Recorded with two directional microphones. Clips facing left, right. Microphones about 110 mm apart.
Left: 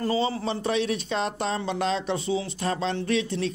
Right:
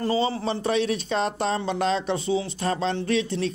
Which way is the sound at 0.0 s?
30° right (ahead or behind).